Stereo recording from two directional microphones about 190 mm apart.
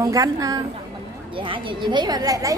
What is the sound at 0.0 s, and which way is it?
A woman's voice, 20° right (ahead or behind).